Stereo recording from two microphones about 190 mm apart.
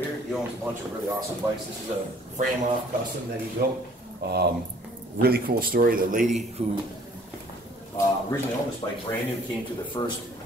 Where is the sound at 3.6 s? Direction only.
55° right (ahead or behind).